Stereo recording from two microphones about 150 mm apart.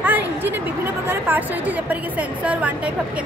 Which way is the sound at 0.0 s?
10° right (ahead or behind).